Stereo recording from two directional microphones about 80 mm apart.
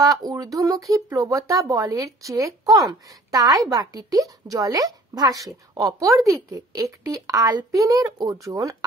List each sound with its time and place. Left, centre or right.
0.0 s a woman's voice: right